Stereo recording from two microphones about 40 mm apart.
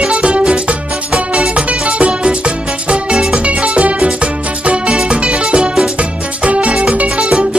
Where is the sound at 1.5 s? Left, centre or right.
Right.